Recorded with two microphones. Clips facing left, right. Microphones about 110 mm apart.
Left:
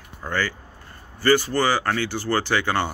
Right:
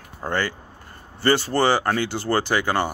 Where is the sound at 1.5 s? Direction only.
25° right (ahead or behind).